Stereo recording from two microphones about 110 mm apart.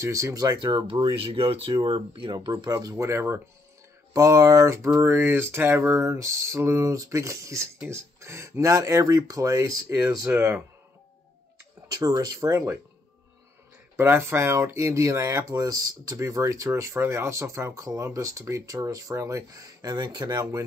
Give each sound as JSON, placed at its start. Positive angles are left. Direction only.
{"t": 0.0, "sound": "speech", "side_deg": -30}
{"t": 2.3, "sound": "speech", "side_deg": -35}
{"t": 11.9, "sound": "speech", "side_deg": -35}
{"t": 13.9, "sound": "speech", "side_deg": -20}